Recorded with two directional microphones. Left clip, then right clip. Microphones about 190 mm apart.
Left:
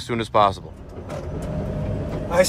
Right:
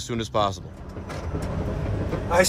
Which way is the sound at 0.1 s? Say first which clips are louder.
Left 6 dB; 15° right (ahead or behind).